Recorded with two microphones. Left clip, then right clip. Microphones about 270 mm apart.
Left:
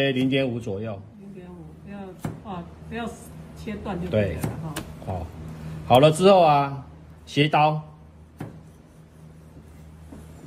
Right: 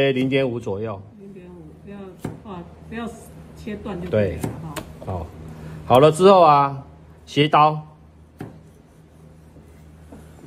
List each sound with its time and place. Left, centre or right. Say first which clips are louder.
0.0 s speech: right 4 dB; right
1.9 s a sound: right 1 dB; centre
4.1 s speech: right 4 dB; right
5.9 s speech: right 3 dB; right